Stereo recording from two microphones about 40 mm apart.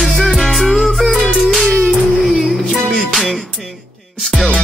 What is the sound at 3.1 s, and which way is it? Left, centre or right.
Music, centre.